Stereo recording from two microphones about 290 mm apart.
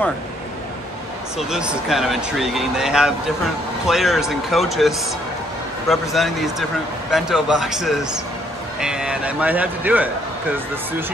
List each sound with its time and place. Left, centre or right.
1.5 s speech: centre